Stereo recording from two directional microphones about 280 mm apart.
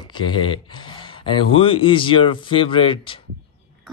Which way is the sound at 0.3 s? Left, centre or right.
Centre.